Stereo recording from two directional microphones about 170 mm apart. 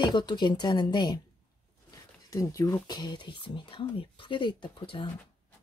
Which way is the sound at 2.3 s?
20° left (ahead or behind).